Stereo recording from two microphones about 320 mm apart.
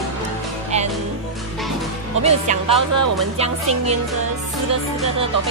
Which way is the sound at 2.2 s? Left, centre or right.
Centre.